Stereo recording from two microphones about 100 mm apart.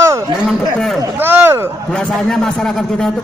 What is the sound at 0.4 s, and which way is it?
Chatter, centre (ahead or behind).